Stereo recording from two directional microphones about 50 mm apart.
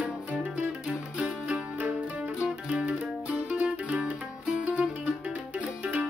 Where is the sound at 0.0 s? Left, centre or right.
Right.